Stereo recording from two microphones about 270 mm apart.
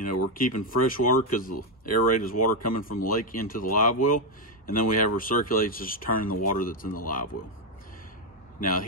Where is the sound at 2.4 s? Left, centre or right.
Left.